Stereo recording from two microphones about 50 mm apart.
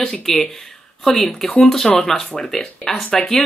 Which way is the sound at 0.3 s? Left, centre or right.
Centre.